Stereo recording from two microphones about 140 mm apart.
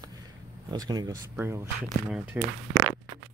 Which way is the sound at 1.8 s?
5° right (ahead or behind).